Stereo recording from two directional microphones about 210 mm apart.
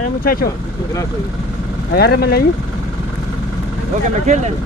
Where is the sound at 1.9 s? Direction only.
50° left (ahead or behind).